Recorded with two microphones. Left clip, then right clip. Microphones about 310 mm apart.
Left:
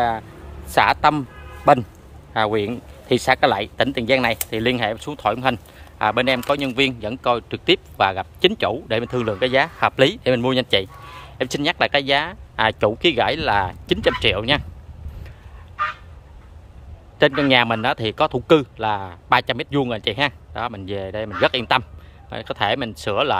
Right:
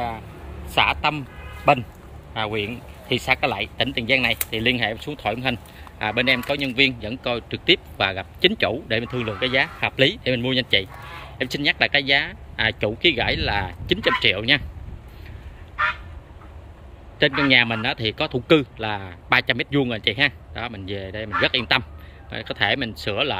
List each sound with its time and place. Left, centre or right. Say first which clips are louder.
0.7 s speech: left 4 dB; centre
2.5 s speech: left 5 dB; left
3.3 s speech: left 5 dB; centre
17.2 s speech: left 2 dB; centre